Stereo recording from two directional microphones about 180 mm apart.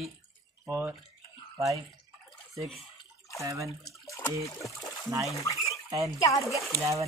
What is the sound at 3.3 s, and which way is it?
Speech, 15° right (ahead or behind).